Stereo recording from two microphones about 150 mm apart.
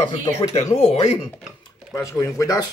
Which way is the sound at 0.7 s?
40° left (ahead or behind).